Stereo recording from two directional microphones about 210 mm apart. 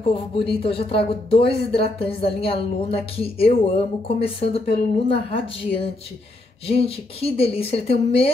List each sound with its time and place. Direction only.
0.0 s a woman's voice: 25° left (ahead or behind)